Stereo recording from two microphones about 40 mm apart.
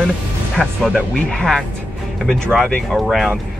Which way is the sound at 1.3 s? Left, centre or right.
Left.